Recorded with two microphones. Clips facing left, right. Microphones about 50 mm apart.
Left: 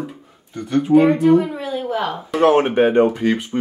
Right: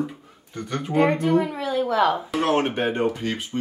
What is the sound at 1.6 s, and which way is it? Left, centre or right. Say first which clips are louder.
Speech: right 1 dB; right.